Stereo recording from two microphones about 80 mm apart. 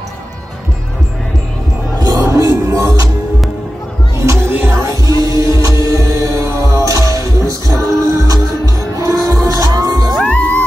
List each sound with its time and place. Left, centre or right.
2.0 s music: right
4.2 s music: right
10.1 s music: centre